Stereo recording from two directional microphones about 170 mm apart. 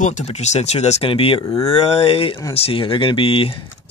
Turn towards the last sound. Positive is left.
turn(degrees=30)  # may be behind; listen again after turning